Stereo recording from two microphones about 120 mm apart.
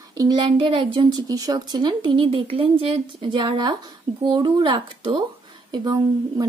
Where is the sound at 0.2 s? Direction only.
35° right (ahead or behind).